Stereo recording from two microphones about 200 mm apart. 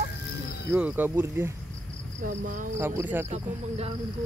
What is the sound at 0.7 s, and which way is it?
Speech, 5° right (ahead or behind).